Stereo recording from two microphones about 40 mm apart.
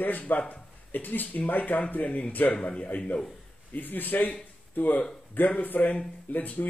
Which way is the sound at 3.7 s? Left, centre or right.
Left.